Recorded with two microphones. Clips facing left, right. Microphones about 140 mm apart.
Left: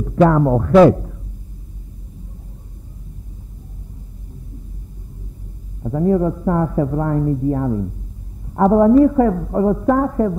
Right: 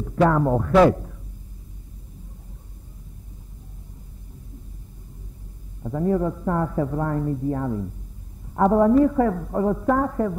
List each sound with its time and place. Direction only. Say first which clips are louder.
0.0 s speech: left 5 dB; 30° left (ahead or behind)
5.8 s a man's voice: left 6 dB; 30° left (ahead or behind)